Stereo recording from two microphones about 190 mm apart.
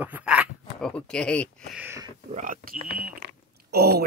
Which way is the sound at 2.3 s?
45° right (ahead or behind).